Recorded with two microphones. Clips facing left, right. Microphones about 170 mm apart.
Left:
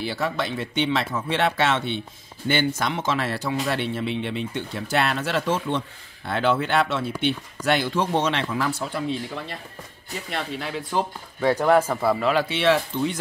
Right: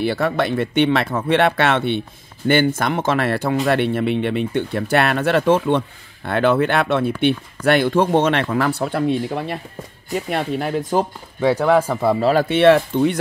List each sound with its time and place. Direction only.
0.0 s speech: 60° right (ahead or behind)
12.2 s speech: 35° right (ahead or behind)
12.4 s speech: 55° right (ahead or behind)